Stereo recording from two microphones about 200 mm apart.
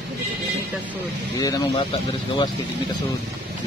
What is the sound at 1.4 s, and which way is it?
Speech, 20° left (ahead or behind).